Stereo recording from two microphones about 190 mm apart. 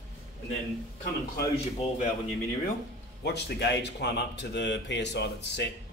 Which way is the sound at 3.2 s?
60° left (ahead or behind).